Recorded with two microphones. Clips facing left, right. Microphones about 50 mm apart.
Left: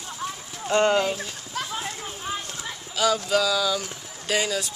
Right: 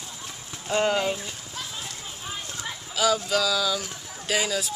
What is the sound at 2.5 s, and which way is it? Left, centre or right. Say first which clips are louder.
Speech: even; centre.